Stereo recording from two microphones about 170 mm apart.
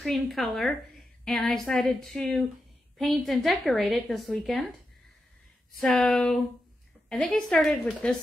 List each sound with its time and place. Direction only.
0.0 s a woman's voice: centre (ahead or behind)
5.8 s a woman's voice: 5° left (ahead or behind)